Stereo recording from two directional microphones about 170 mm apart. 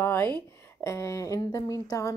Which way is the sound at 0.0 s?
15° left (ahead or behind).